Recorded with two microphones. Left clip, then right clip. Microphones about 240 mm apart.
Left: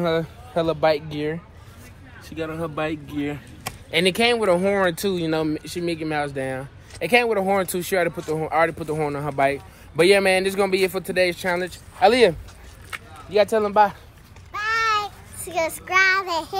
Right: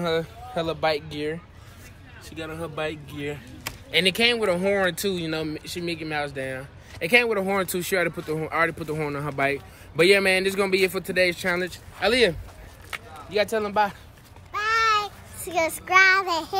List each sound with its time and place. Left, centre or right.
0.0 s speech: left
7.0 s speech: centre
12.0 s speech: centre
12.9 s a sound: right
13.3 s speech: centre
14.5 s child singing: centre